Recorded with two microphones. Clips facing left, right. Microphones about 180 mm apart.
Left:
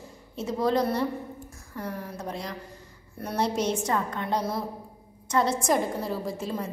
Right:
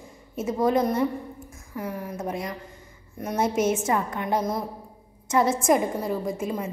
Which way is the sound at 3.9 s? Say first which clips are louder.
Right 2 dB; 15° right (ahead or behind).